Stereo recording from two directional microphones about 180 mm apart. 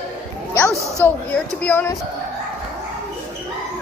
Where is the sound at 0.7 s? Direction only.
15° right (ahead or behind).